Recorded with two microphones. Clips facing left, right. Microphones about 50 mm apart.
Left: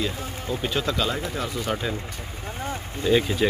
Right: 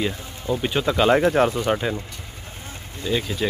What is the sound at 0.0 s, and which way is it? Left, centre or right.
Speech, centre.